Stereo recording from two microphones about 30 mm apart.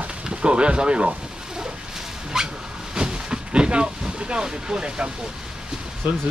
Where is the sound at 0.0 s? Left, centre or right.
Right.